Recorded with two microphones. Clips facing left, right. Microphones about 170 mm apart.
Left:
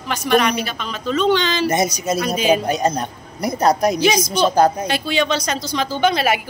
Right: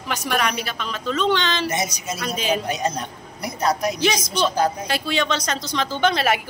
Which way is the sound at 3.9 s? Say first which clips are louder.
Left 5 dB; 5° left (ahead or behind).